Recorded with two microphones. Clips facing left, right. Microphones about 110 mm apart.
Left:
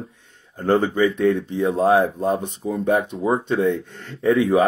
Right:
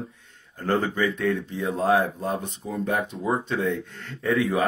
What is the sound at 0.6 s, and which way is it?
Speech, 25° left (ahead or behind).